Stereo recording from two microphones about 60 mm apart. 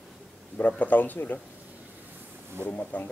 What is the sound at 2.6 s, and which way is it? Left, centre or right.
Speech, left.